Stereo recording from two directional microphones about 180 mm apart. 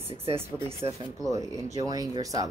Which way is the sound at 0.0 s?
30° right (ahead or behind).